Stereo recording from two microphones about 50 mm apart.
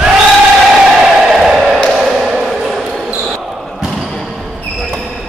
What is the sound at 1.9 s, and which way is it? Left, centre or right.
Basketball bounce, centre.